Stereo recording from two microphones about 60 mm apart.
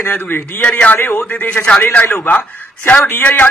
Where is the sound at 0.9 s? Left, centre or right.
Left.